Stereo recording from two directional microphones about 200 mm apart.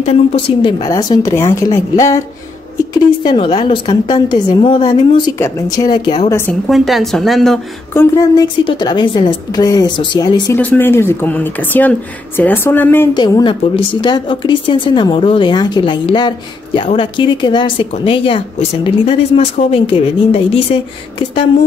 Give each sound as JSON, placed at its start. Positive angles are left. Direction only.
{"t": 0.0, "sound": "speech", "side_deg": 30}
{"t": 6.7, "sound": "a woman's voice", "side_deg": 0}
{"t": 7.9, "sound": "speech", "side_deg": 15}
{"t": 10.5, "sound": "speech", "side_deg": 10}
{"t": 13.1, "sound": "speech", "side_deg": 20}